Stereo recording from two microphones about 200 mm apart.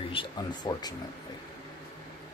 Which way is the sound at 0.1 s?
25° left (ahead or behind).